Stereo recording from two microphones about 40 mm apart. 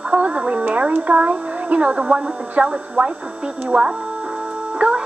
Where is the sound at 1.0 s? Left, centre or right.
Right.